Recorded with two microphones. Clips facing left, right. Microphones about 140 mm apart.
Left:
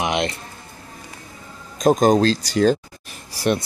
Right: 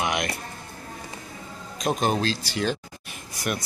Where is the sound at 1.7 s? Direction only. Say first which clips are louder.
Left 9 dB; 40° left (ahead or behind).